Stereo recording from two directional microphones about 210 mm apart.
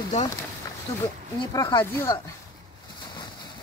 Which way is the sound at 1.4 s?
20° left (ahead or behind).